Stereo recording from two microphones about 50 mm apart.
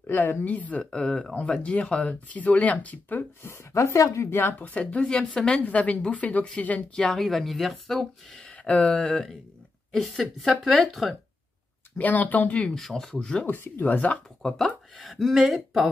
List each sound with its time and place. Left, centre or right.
0.0 s speech: left
0.8 s speech: centre
1.6 s speech: left
3.7 s speech: left
4.3 s speech: left
4.6 s speech: left
4.9 s speech: centre
7.1 s speech: centre
8.4 s speech: left
9.9 s speech: centre
12.0 s speech: left
12.7 s speech: centre
13.5 s speech: left
15.0 s speech: centre